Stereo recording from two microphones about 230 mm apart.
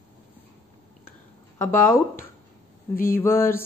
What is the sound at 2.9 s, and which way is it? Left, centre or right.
Speech, left.